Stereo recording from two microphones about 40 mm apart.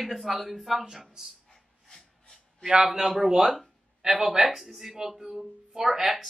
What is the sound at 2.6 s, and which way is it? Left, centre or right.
Speech, centre.